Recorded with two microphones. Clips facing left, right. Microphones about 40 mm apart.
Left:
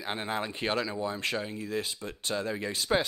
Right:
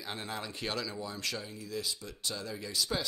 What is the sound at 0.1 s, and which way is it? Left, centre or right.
Speech, left.